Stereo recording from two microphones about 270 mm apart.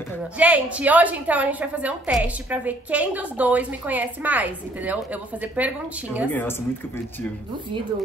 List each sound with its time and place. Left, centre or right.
0.4 s a woman's voice: centre